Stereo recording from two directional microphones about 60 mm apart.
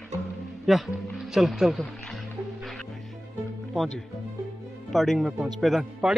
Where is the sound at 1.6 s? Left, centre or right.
Centre.